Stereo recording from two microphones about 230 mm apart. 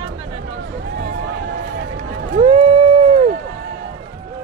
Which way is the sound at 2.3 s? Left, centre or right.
Right.